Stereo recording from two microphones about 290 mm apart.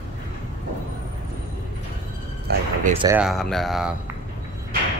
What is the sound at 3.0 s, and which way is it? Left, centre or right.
Speech, centre.